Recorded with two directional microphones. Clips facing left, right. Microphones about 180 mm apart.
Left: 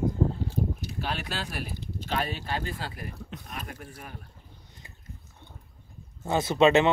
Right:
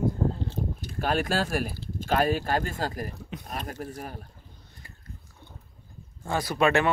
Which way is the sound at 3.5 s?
40° right (ahead or behind).